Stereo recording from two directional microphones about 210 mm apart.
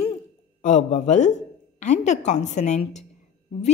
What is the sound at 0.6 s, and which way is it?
A woman's voice, 35° left (ahead or behind).